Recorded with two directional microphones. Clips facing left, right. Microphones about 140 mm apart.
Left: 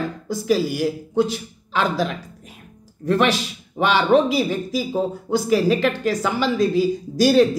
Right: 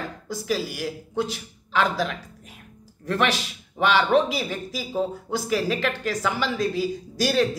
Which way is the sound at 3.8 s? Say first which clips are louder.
Left 3 dB; 35° left (ahead or behind).